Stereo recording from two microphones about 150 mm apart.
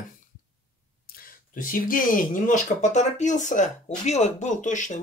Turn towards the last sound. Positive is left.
turn(degrees=55)  # may be behind; listen again after turning